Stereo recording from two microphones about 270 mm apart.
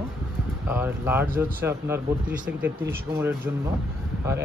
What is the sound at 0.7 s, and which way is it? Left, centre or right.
Speech, centre.